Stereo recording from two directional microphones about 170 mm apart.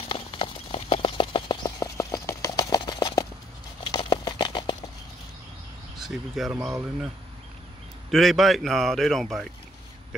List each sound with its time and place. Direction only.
0.1 s clip-clop: 30° left (ahead or behind)
3.8 s a sound: 25° left (ahead or behind)
5.9 s a man's voice: centre (ahead or behind)
8.1 s a man's voice: centre (ahead or behind)